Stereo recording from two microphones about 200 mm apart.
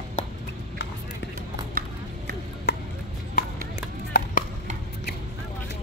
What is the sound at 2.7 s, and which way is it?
Music, 55° left (ahead or behind).